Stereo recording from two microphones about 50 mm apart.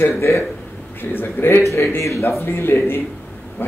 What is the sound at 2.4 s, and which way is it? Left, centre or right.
Speech, left.